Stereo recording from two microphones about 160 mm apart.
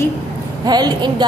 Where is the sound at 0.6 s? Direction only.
25° right (ahead or behind).